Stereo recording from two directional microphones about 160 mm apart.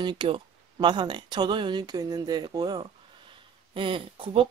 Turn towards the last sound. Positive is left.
turn(degrees=-35)  # may be behind; listen again after turning